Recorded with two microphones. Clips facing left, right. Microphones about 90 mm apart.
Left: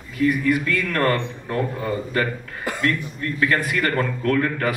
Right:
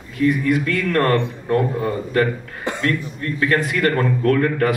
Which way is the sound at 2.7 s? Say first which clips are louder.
Right 3 dB; 25° right (ahead or behind).